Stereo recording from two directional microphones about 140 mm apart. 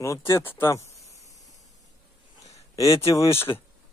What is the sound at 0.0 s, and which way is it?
Speech, 20° left (ahead or behind).